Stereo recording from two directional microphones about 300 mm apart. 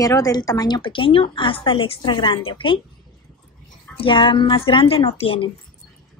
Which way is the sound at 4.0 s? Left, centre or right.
Centre.